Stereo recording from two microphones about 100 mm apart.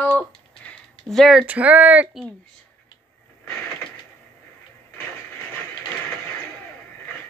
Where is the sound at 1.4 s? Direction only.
15° right (ahead or behind).